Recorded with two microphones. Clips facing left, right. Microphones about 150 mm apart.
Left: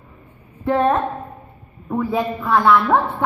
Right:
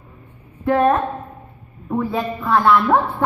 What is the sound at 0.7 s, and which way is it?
Speech, 25° left (ahead or behind).